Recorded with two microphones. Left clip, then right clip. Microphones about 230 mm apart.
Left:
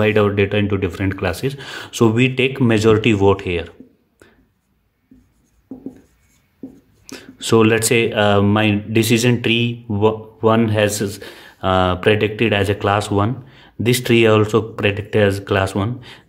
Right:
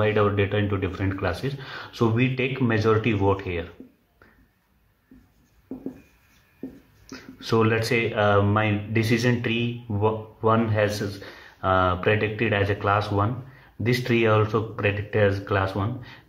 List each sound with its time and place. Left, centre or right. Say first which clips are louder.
0.0 s speech: left 6 dB; left
7.1 s speech: left 9 dB; left